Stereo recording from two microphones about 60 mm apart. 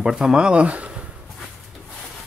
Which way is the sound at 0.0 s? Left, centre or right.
Centre.